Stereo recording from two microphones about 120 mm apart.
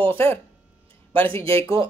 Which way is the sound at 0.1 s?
20° left (ahead or behind).